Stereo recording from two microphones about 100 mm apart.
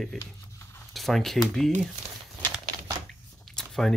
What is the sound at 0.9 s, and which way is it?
Speech, centre (ahead or behind).